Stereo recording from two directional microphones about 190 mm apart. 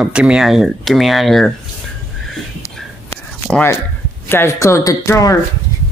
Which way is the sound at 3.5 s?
10° left (ahead or behind).